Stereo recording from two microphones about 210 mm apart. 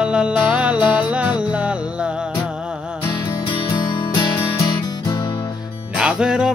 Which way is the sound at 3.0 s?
20° left (ahead or behind).